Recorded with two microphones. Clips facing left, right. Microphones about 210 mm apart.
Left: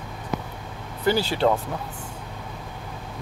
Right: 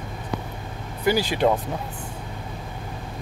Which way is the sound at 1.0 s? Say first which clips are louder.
Right 1 dB; 15° right (ahead or behind).